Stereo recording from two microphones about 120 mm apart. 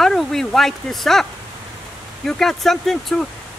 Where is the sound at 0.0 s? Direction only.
5° left (ahead or behind).